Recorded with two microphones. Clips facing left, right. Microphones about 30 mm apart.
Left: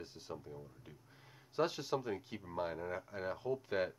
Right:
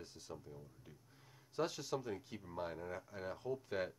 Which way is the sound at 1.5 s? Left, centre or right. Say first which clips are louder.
Left 4 dB; centre.